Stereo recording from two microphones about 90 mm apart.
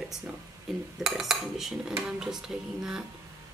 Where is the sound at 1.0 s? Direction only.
5° right (ahead or behind).